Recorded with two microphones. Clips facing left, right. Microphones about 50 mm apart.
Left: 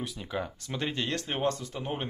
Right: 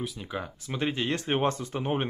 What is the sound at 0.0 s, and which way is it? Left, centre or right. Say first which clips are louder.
Speech: even; centre.